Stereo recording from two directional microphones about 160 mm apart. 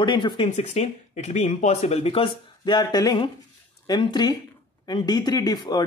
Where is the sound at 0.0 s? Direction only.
30° left (ahead or behind).